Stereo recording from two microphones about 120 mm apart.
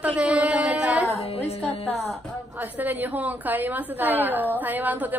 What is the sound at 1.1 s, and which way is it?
Speech, 60° left (ahead or behind).